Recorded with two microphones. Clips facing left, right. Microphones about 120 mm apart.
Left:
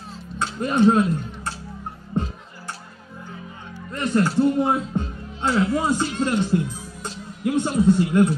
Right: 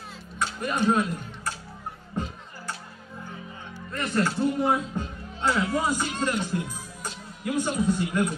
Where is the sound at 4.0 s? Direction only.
25° left (ahead or behind).